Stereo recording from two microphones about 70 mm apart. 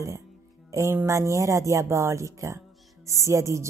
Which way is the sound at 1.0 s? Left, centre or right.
Right.